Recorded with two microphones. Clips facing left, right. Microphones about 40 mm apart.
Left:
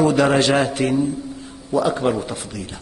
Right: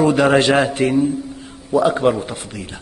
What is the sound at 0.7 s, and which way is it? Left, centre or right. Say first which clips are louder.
A man's voice: right 3 dB; centre.